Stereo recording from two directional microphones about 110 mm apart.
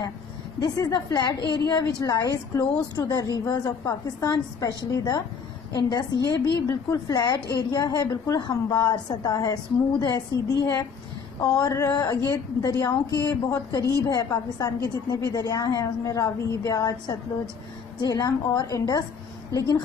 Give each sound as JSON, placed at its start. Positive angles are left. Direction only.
{"t": 0.6, "sound": "a woman's voice", "side_deg": 35}